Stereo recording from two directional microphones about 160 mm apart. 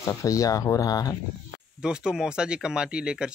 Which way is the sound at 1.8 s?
5° right (ahead or behind).